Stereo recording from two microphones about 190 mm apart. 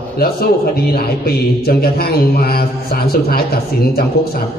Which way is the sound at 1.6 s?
55° left (ahead or behind).